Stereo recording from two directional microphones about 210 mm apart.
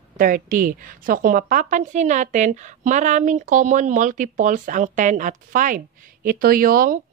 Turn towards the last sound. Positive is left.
turn(degrees=-40)  # may be behind; listen again after turning